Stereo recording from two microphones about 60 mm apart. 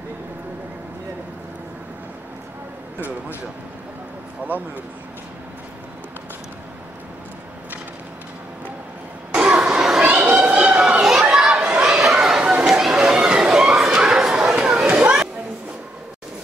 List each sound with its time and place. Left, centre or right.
4.5 s speech: right
9.3 s vehicle: centre
10.0 s children playing: centre
10.4 s chatter: centre
12.2 s chatter: centre
14.9 s a sound: centre